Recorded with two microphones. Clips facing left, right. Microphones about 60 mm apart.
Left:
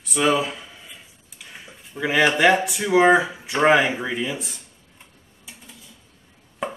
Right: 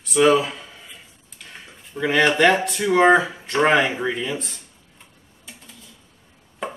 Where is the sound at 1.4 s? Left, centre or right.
Centre.